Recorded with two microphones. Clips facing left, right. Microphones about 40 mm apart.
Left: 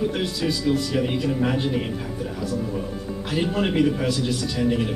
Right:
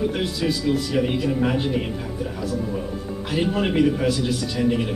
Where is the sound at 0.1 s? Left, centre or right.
Centre.